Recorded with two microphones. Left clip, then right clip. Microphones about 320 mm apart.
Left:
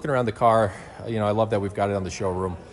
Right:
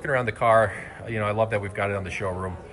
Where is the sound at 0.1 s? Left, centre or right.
Left.